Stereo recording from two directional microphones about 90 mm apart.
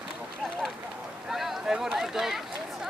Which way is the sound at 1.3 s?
5° right (ahead or behind).